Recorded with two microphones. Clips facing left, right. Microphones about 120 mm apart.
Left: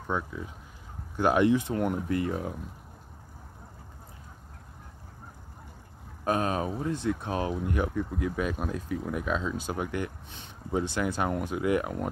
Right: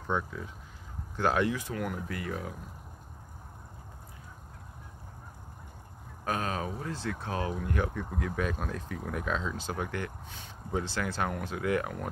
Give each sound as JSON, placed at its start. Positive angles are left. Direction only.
{"t": 0.1, "sound": "speech", "side_deg": 5}
{"t": 6.2, "sound": "speech", "side_deg": 20}